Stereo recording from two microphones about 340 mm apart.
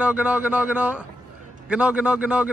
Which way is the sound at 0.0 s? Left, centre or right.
Centre.